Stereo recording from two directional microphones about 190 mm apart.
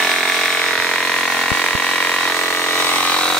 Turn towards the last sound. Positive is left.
turn(degrees=5)  # may be behind; listen again after turning